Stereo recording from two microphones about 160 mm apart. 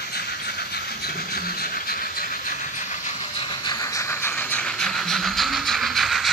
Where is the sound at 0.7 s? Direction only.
85° left; by 3.1 s 55° left (ahead or behind).